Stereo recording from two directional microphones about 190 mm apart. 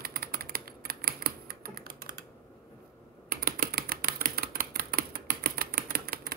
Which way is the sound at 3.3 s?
50° right (ahead or behind).